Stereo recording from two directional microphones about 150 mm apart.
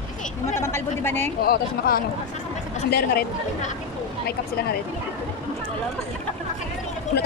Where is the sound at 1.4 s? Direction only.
85° left.